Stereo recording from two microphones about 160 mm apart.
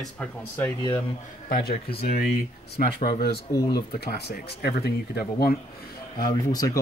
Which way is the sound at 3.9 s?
85° left.